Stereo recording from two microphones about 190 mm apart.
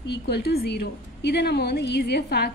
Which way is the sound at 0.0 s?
60° left (ahead or behind).